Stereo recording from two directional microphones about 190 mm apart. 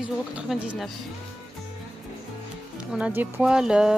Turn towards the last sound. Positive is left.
turn(degrees=-5)  # may be behind; listen again after turning